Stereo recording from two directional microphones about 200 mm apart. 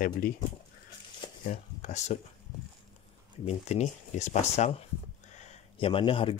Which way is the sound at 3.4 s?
35° left (ahead or behind).